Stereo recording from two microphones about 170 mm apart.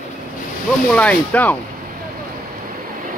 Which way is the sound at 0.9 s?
10° left (ahead or behind).